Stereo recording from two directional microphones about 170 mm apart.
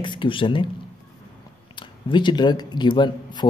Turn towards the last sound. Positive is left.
turn(degrees=25)  # may be behind; listen again after turning